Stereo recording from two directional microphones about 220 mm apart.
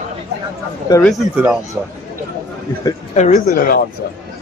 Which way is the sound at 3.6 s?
40° left (ahead or behind).